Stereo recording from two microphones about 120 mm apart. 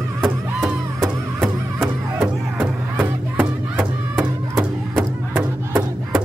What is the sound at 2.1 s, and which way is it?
Music, 15° right (ahead or behind).